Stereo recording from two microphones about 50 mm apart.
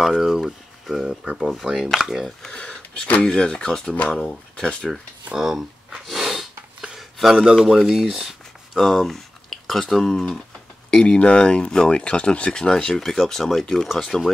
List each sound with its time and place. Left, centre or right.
0.0 s speech: centre
2.5 s a sound: left
3.3 s speech: centre
5.3 s speech: centre
6.0 s snort: centre
7.6 s speech: centre
8.7 s speech: centre
10.9 s speech: centre